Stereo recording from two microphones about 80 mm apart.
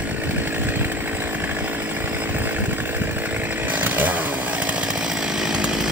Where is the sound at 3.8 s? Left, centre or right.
Right.